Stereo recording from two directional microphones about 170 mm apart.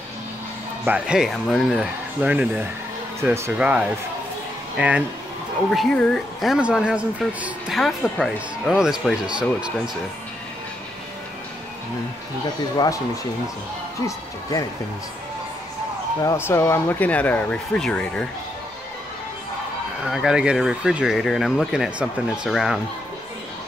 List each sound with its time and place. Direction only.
0.8 s speech: 5° right (ahead or behind)
5.7 s speech: 5° left (ahead or behind)
12.7 s speech: 20° left (ahead or behind)
14.0 s speech: 20° left (ahead or behind)
16.2 s speech: 15° left (ahead or behind)
20.0 s speech: centre (ahead or behind)